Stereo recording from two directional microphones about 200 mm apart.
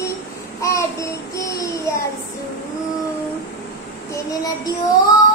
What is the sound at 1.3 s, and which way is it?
Child singing, 15° left (ahead or behind).